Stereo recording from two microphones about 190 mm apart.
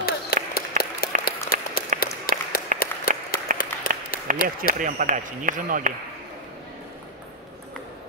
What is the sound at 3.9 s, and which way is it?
Applause, 45° left (ahead or behind).